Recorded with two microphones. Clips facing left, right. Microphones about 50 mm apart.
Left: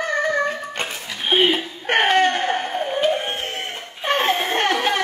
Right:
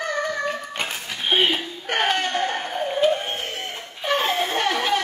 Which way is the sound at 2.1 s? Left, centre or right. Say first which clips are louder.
Left 6 dB; left.